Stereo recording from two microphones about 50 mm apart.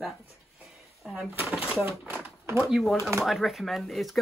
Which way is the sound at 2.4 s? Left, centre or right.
Right.